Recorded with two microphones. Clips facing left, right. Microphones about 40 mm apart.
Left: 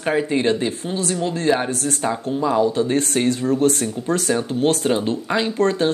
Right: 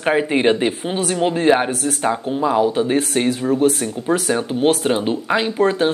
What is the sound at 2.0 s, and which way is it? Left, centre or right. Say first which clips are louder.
Speech: right 2 dB; centre.